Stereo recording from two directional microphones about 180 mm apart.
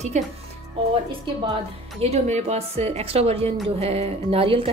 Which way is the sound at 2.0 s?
35° right (ahead or behind).